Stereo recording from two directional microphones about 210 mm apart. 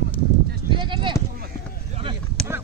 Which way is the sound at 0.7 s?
25° right (ahead or behind).